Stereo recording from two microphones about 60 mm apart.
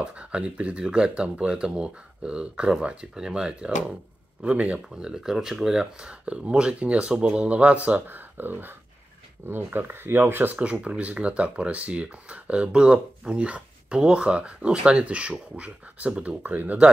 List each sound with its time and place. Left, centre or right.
0.0 s speech: centre; by 10.6 s right
10.6 s speech: centre